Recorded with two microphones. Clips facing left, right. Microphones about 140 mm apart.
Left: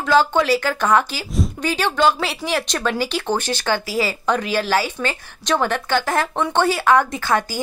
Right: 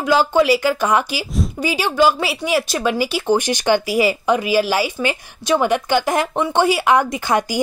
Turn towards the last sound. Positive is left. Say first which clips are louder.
# right 2 dB
turn(degrees=-15)  # may be behind; listen again after turning